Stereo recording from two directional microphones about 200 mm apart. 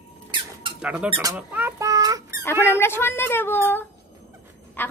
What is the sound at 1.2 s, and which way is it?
Rodents, 10° right (ahead or behind).